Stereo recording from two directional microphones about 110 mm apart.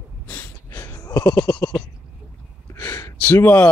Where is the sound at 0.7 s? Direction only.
35° left (ahead or behind).